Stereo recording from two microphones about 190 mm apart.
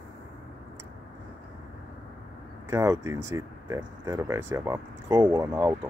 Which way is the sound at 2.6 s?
15° right (ahead or behind).